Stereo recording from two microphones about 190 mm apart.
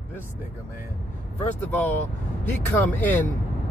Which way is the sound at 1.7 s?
10° left (ahead or behind).